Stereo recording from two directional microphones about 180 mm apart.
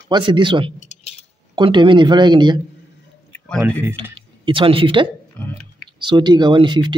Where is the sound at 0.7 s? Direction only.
40° left (ahead or behind).